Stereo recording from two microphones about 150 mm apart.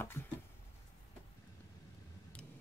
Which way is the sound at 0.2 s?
20° left (ahead or behind).